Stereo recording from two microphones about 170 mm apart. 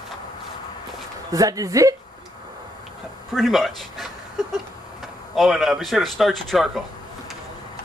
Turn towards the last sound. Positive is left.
turn(degrees=0)  # may be behind; listen again after turning